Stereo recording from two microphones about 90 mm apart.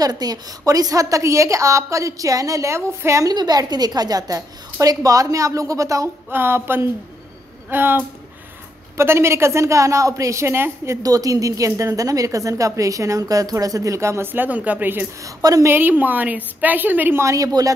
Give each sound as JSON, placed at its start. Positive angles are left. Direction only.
{"t": 0.0, "sound": "a woman's voice", "side_deg": -45}
{"t": 3.3, "sound": "a woman's voice", "side_deg": -50}
{"t": 6.3, "sound": "a woman's voice", "side_deg": -25}
{"t": 11.0, "sound": "a woman's voice", "side_deg": -45}
{"t": 15.2, "sound": "a woman's voice", "side_deg": -40}
{"t": 15.7, "sound": "a woman's voice", "side_deg": -20}
{"t": 17.2, "sound": "a woman's voice", "side_deg": -35}